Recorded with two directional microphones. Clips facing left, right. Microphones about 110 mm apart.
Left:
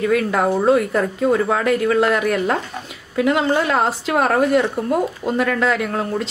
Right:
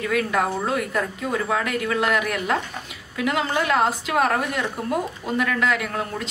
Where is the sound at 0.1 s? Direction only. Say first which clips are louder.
Left 2 dB; 30° left (ahead or behind).